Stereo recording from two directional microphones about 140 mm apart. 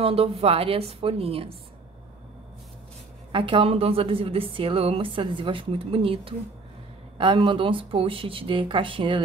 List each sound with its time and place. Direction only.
0.0 s a woman's voice: 45° right (ahead or behind)
3.3 s a woman's voice: 35° right (ahead or behind)